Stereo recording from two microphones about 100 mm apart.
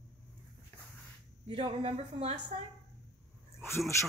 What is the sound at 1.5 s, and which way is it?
Speech, 65° right (ahead or behind).